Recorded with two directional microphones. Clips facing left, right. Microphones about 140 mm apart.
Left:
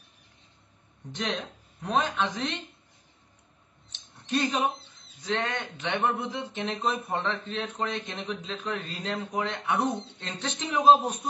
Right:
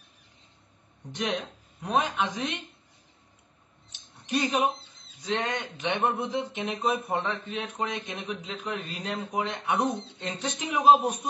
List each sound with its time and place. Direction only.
1.8 s speech: 15° right (ahead or behind)
3.9 s mouse: 10° right (ahead or behind)
5.2 s speech: 15° right (ahead or behind)